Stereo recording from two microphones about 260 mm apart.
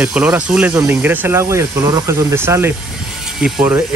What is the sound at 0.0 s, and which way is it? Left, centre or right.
Speech, centre.